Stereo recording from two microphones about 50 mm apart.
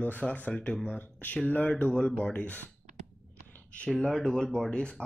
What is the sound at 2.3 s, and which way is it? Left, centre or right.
Speech, left.